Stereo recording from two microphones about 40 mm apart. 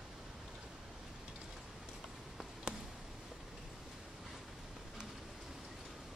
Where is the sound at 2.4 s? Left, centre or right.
Centre.